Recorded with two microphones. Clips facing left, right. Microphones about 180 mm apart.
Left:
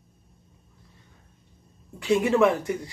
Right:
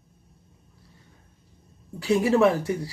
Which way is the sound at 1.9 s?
35° right (ahead or behind).